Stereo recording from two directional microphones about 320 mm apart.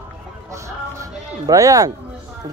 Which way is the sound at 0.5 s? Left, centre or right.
Centre.